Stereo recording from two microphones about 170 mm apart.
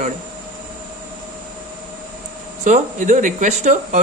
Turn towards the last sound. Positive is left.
turn(degrees=-45)  # may be behind; listen again after turning